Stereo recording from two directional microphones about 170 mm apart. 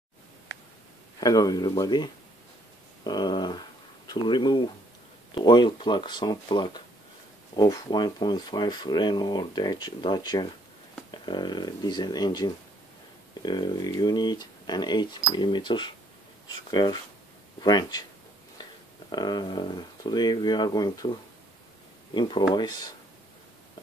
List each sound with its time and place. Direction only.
1.2 s speech: 20° left (ahead or behind)
3.0 s dog: 25° left (ahead or behind)
4.1 s speech: 25° left (ahead or behind)
19.0 s speech: 25° left (ahead or behind)